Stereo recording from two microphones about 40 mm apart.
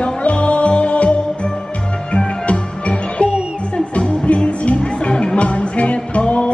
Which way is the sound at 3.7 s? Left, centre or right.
Left.